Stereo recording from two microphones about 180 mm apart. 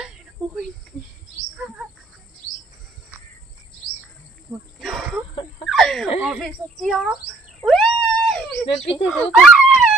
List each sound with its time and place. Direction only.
4.7 s throat clearing: centre (ahead or behind)
5.3 s a sound: 25° left (ahead or behind)
5.7 s fowl: centre (ahead or behind)
7.6 s cat: 5° left (ahead or behind)
9.1 s speech: centre (ahead or behind)